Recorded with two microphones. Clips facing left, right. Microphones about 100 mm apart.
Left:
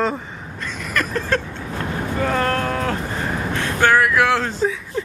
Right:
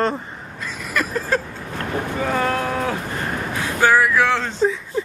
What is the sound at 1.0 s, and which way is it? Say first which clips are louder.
Vehicle: even; 5° right (ahead or behind).